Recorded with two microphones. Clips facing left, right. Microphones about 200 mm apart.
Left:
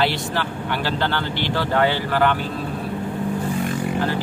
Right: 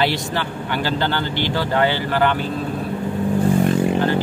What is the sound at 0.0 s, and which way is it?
Speech, centre (ahead or behind).